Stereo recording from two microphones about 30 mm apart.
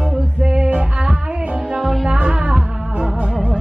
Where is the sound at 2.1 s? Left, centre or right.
Right.